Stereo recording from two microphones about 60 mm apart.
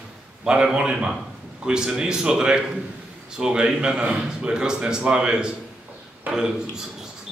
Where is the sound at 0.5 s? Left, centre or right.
Centre.